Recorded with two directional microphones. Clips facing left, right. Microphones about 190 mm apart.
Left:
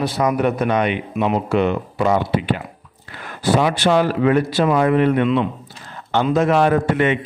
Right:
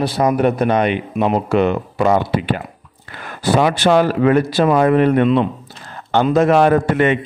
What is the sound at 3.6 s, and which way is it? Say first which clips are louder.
Speech: right 4 dB; 50° right (ahead or behind).